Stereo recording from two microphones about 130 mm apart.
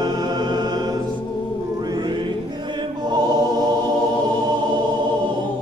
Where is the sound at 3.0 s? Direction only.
35° right (ahead or behind).